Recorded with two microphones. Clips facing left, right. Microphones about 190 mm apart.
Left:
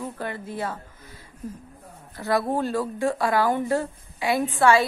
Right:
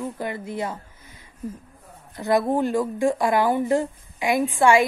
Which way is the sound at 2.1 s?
20° right (ahead or behind).